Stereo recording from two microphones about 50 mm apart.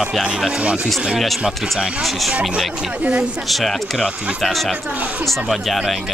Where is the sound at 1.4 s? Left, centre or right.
Centre.